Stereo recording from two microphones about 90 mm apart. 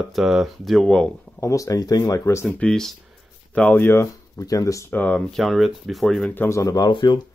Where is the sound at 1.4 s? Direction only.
40° left (ahead or behind).